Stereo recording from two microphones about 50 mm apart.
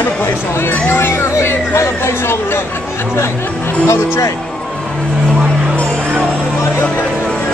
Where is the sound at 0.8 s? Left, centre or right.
Left.